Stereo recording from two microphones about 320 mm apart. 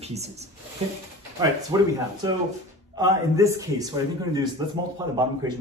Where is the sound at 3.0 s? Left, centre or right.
Centre.